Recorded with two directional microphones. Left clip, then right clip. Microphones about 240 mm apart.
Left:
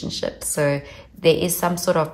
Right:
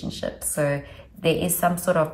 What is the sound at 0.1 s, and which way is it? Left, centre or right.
A woman's voice, left.